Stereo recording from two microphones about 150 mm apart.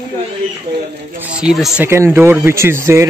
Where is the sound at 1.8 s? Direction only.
15° right (ahead or behind).